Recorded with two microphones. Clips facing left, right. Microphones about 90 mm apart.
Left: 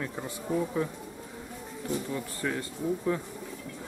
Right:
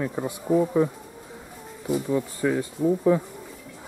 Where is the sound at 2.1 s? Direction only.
10° right (ahead or behind).